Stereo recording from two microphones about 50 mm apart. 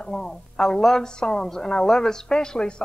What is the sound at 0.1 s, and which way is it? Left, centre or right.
A woman's voice, centre.